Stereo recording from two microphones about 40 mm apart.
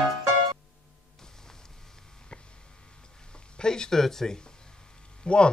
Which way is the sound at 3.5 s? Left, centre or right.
Centre.